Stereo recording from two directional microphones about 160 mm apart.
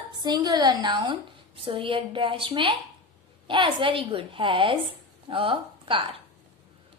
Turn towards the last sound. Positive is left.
turn(degrees=-35)  # may be behind; listen again after turning